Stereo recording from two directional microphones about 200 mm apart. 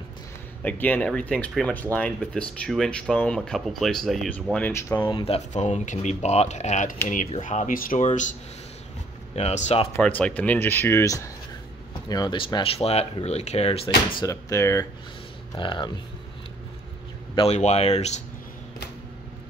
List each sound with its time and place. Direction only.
0.6 s speech: 10° left (ahead or behind)
5.0 s speech: 25° left (ahead or behind)
9.9 s speech: 5° left (ahead or behind); by 13.9 s 30° left (ahead or behind)
14.2 s speech: 15° left (ahead or behind)
17.4 s speech: 35° left (ahead or behind)